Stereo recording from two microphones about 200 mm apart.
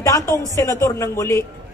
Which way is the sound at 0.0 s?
15° left (ahead or behind).